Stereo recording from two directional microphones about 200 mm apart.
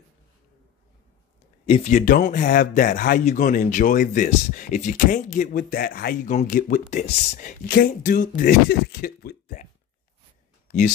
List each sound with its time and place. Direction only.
1.7 s speech: 40° left (ahead or behind)